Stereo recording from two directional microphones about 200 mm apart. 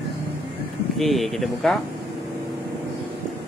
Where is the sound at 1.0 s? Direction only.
Centre (ahead or behind).